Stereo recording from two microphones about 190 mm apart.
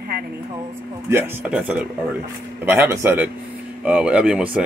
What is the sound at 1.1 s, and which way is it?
A man's voice, 10° right (ahead or behind).